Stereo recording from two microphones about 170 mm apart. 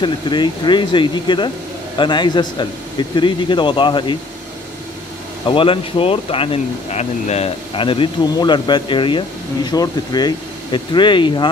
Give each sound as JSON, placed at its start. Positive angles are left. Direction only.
{"t": 0.0, "sound": "speech", "side_deg": 25}
{"t": 5.5, "sound": "speech", "side_deg": 30}